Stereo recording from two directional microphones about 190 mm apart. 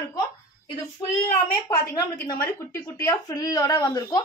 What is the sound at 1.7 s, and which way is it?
A woman's voice, 15° left (ahead or behind).